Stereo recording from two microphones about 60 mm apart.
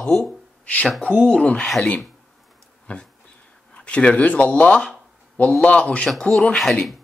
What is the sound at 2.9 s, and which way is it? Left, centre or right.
Speech, left.